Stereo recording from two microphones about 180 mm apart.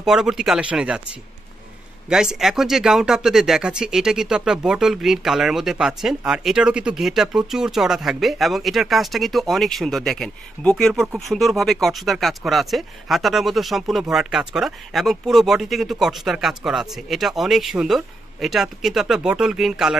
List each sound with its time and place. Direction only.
0.0 s speech: 5° right (ahead or behind)
2.0 s speech: 5° right (ahead or behind)